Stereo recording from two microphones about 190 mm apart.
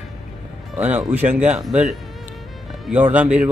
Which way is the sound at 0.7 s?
10° right (ahead or behind).